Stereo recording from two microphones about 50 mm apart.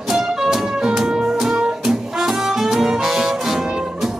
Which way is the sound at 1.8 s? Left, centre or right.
Centre.